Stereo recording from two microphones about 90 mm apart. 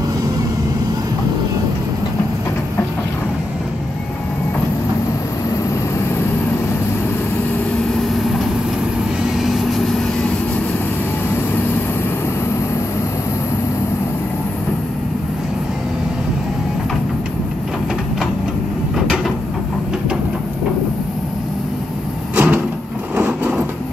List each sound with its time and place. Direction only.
8.0 s vehicle: centre (ahead or behind)
9.4 s vehicle: centre (ahead or behind)
22.3 s vehicle: 15° right (ahead or behind)